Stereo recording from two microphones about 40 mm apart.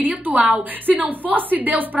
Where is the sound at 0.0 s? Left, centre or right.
Right.